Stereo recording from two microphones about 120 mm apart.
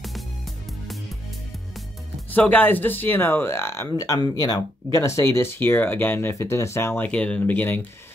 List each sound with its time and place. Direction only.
2.3 s speech: 15° left (ahead or behind)
3.9 s speech: 30° left (ahead or behind); by 7.8 s 15° left (ahead or behind)